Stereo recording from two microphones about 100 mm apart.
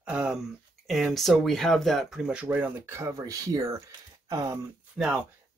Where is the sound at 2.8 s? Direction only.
25° right (ahead or behind).